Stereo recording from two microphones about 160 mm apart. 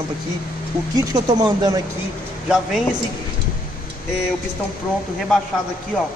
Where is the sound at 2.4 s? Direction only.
5° right (ahead or behind).